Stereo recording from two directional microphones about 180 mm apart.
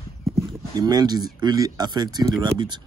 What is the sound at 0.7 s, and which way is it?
Speech, 20° right (ahead or behind).